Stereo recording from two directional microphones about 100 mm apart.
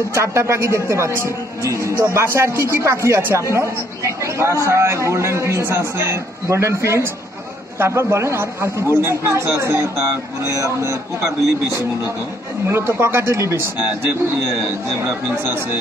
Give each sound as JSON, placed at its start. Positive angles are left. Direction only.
{"t": 0.1, "sound": "a man's voice", "side_deg": -25}
{"t": 12.6, "sound": "a man's voice", "side_deg": -25}